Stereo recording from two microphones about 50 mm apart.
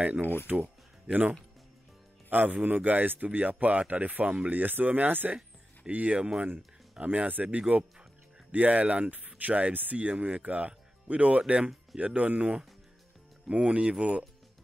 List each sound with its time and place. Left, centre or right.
0.0 s speech: right
0.5 s music: right
2.6 s speech: right
5.9 s speech: right